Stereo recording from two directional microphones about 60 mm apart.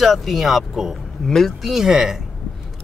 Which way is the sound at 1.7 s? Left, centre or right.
Centre.